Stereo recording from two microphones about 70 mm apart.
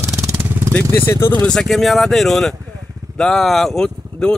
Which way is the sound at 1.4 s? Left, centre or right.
Centre.